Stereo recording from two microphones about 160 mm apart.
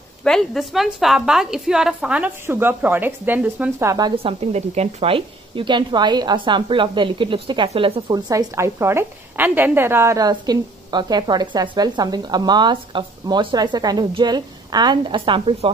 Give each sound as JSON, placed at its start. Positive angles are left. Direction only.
{"t": 0.2, "sound": "a woman's voice", "side_deg": 5}
{"t": 4.2, "sound": "a woman's voice", "side_deg": -40}
{"t": 8.1, "sound": "a woman's voice", "side_deg": -20}